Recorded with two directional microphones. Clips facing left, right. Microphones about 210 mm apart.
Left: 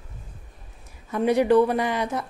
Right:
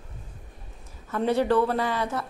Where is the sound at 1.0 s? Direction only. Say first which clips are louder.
Left 3 dB; 15° left (ahead or behind).